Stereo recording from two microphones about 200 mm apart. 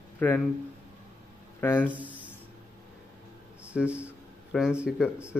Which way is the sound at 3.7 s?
5° right (ahead or behind).